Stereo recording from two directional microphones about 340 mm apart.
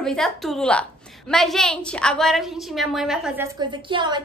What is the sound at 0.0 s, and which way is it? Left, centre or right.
A woman's voice, centre.